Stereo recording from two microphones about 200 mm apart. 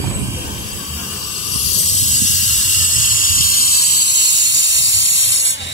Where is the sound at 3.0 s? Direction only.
45° left (ahead or behind).